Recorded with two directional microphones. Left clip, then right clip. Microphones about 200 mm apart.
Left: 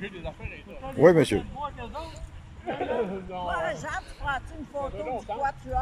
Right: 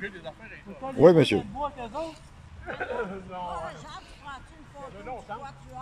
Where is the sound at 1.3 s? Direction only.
15° right (ahead or behind).